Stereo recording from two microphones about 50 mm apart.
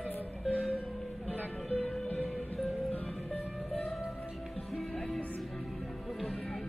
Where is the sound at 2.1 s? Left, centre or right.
Left.